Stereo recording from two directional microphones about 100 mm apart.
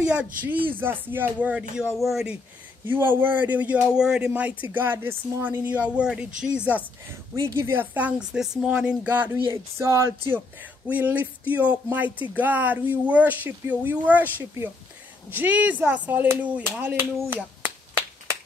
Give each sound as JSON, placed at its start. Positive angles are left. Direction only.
{"t": 0.0, "sound": "speech", "side_deg": -10}
{"t": 2.9, "sound": "speech", "side_deg": -20}
{"t": 7.3, "sound": "speech", "side_deg": -30}
{"t": 9.5, "sound": "speech", "side_deg": -30}
{"t": 10.9, "sound": "speech", "side_deg": -15}